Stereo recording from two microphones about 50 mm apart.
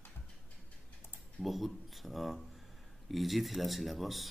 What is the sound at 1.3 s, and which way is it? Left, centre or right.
A man's voice, centre.